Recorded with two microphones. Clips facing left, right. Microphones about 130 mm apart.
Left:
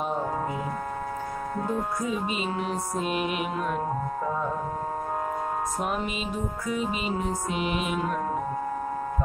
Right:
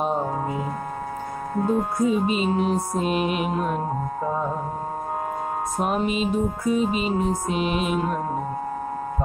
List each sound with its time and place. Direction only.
1.6 s music: 25° right (ahead or behind)
5.8 s music: 25° right (ahead or behind)